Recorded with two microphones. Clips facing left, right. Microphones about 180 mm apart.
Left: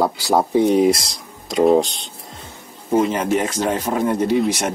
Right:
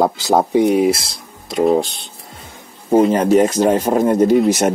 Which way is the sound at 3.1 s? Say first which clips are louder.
Right 7 dB; 40° right (ahead or behind).